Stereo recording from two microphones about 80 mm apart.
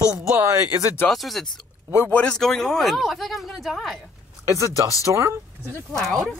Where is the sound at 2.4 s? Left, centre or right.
Centre.